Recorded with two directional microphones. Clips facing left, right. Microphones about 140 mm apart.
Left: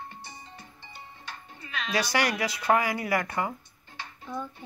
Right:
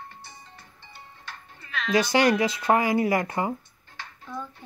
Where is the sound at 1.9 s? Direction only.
20° right (ahead or behind).